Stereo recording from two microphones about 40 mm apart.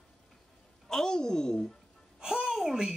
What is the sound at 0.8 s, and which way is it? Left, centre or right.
Speech, centre.